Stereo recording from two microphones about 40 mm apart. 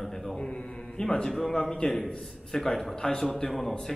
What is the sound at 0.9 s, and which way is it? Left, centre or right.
Speech, centre.